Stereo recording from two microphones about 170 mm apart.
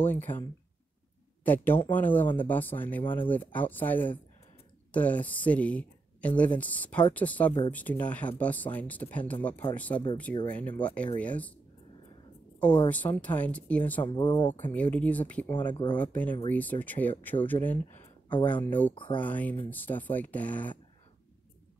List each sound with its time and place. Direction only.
0.0 s speech: 10° left (ahead or behind)
1.4 s speech: 10° left (ahead or behind)
12.8 s speech: 10° left (ahead or behind)
14.0 s speech: 30° left (ahead or behind)
14.5 s speech: 10° left (ahead or behind)
15.7 s speech: 25° left (ahead or behind)
16.0 s speech: 10° left (ahead or behind)